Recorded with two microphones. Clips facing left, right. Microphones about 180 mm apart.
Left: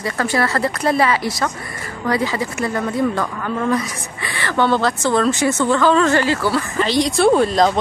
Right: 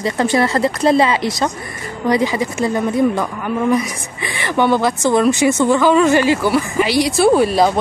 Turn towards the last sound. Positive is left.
turn(degrees=-10)  # may be behind; listen again after turning